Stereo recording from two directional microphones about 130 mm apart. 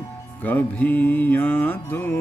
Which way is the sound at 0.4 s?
15° left (ahead or behind).